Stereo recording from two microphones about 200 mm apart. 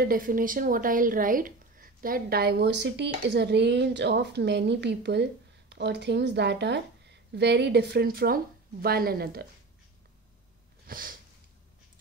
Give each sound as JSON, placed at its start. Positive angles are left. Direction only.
{"t": 0.0, "sound": "a woman's voice", "side_deg": -45}
{"t": 10.9, "sound": "sniff", "side_deg": -45}